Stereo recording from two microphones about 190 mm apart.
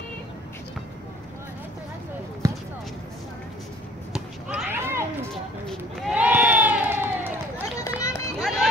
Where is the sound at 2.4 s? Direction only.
15° right (ahead or behind).